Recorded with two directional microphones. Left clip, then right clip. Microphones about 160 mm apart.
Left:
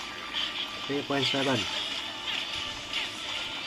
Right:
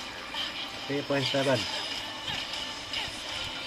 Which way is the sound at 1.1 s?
30° left (ahead or behind).